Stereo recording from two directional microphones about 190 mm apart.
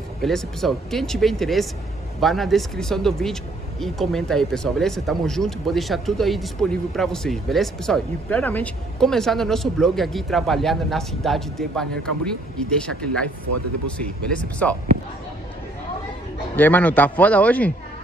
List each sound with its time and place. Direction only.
0.2 s speech: centre (ahead or behind)
16.5 s a man's voice: 10° left (ahead or behind)